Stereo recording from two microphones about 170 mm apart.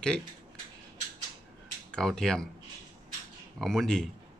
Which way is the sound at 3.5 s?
5° left (ahead or behind).